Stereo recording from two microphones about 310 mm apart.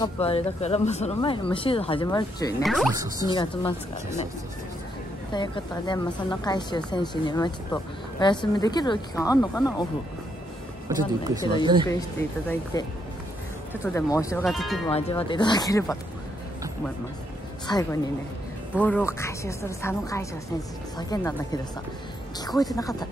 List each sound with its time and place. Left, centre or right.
0.0 s speech: centre
2.6 s speech: centre
2.9 s speech: centre
3.3 s speech: centre
5.3 s speech: centre
10.9 s speech: centre
11.9 s speech: centre
13.9 s speech: centre
14.9 s speech: centre
17.7 s speech: centre
22.8 s speech: centre